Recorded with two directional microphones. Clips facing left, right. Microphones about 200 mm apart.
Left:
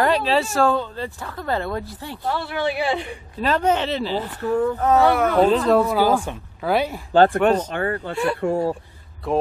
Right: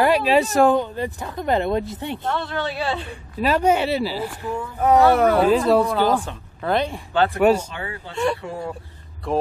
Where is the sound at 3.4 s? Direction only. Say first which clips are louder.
Right 2 dB; 10° right (ahead or behind).